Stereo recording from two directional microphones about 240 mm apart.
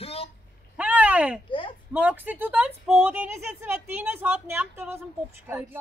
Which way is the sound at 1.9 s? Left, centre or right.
Centre.